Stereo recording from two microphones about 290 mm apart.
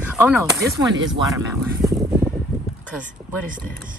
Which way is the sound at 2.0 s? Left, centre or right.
Centre.